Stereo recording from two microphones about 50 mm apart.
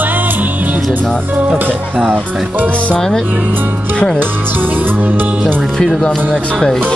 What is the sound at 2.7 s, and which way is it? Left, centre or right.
Music, left.